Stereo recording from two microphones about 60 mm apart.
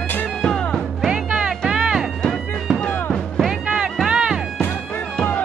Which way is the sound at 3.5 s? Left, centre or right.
Centre.